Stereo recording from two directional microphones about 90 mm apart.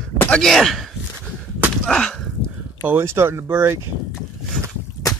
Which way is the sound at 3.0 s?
30° right (ahead or behind).